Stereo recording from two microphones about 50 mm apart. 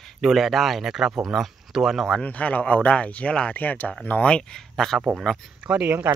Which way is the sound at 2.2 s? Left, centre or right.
Left.